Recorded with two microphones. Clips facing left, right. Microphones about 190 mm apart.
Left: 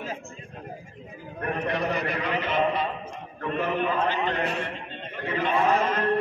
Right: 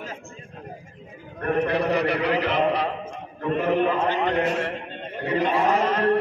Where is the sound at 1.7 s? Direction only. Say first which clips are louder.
Right 5 dB; 70° right (ahead or behind).